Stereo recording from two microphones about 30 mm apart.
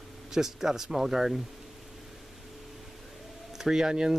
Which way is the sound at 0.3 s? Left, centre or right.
Centre.